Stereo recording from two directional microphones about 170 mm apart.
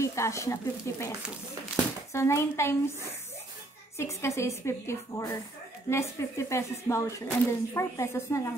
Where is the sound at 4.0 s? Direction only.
15° left (ahead or behind).